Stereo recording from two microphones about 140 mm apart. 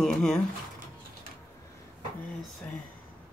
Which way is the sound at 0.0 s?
5° left (ahead or behind).